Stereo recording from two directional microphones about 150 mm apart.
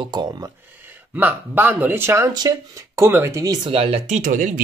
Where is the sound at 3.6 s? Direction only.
40° right (ahead or behind).